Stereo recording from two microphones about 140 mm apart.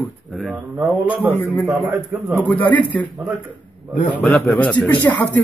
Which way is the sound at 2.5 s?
35° left (ahead or behind).